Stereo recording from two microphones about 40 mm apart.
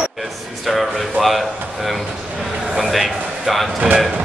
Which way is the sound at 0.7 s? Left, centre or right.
Centre.